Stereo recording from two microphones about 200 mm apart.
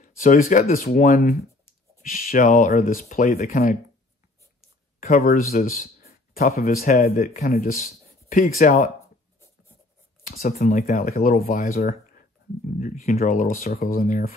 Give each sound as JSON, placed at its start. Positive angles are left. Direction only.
{"t": 0.0, "sound": "speech", "side_deg": 40}
{"t": 5.0, "sound": "speech", "side_deg": 45}
{"t": 10.2, "sound": "speech", "side_deg": 45}